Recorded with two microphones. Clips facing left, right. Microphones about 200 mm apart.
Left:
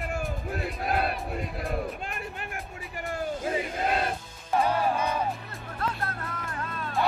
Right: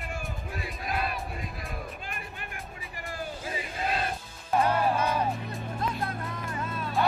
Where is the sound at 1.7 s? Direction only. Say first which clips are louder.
Left 7 dB; 70° left (ahead or behind).